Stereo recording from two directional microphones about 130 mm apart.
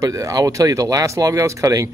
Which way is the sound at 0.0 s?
25° right (ahead or behind).